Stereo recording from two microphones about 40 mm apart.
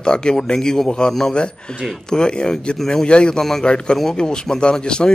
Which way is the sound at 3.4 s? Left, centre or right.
Centre.